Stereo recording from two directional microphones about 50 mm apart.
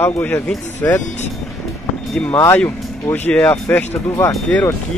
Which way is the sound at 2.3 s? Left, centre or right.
Left.